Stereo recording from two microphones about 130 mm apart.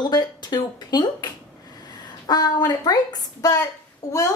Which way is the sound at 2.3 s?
30° left (ahead or behind).